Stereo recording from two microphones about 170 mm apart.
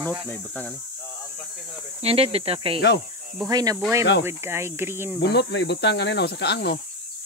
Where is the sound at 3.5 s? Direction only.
20° right (ahead or behind).